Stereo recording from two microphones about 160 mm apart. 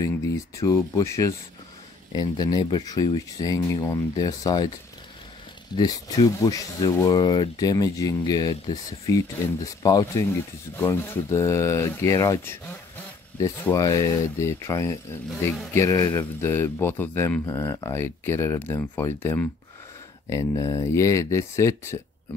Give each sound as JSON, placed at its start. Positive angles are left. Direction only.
{"t": 0.0, "sound": "speech", "side_deg": 20}
{"t": 5.8, "sound": "speech", "side_deg": 20}